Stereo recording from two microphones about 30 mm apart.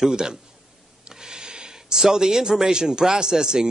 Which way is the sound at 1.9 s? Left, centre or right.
Centre.